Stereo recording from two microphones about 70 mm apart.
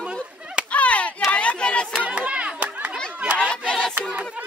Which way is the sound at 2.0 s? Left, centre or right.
Centre.